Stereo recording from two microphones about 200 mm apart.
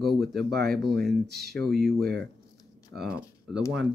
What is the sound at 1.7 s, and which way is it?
Speech, 50° right (ahead or behind).